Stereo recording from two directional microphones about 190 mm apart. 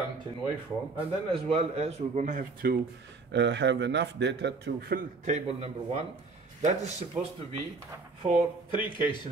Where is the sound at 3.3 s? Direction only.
70° right (ahead or behind).